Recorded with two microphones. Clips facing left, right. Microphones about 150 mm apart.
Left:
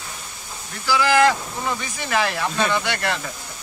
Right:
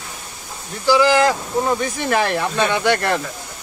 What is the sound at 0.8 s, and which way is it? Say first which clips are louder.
Speech: right 3 dB; 35° right (ahead or behind).